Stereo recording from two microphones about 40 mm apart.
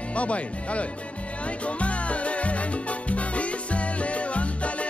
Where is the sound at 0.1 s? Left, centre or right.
Left.